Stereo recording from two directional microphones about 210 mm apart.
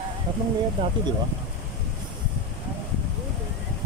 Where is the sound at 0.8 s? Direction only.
25° right (ahead or behind).